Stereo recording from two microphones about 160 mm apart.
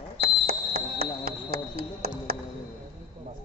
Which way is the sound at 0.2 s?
75° right (ahead or behind).